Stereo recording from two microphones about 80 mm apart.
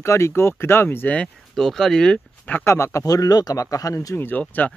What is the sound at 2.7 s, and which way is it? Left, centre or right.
Speech, left.